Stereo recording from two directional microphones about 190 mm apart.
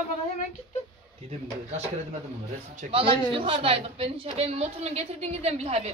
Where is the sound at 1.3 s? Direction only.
35° right (ahead or behind).